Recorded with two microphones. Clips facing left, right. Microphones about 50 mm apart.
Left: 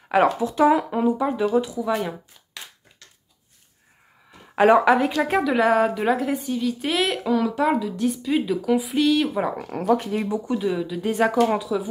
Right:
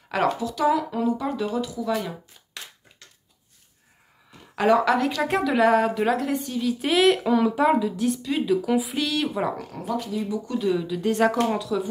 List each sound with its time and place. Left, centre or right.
0.1 s speech: left
0.5 s speech: left
4.6 s speech: left
5.2 s a woman's voice: centre
9.7 s speech: left
10.3 s speech: left